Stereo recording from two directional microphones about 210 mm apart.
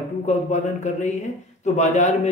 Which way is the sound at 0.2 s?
35° left (ahead or behind).